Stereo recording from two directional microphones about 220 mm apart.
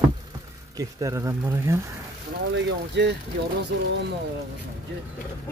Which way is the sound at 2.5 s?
55° right (ahead or behind).